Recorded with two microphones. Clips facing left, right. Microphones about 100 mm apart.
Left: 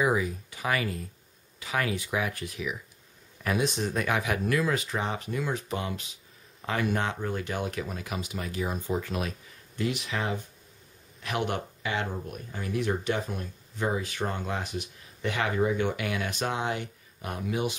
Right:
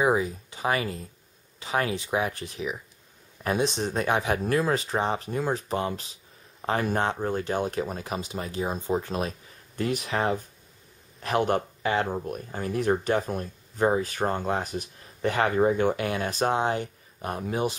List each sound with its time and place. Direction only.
0.0 s speech: 30° right (ahead or behind)
9.8 s speech: 45° right (ahead or behind)